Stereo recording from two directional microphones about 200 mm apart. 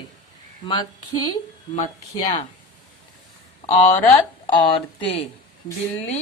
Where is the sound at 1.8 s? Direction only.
35° left (ahead or behind).